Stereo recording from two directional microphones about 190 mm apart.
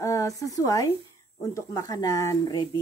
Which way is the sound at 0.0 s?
15° left (ahead or behind).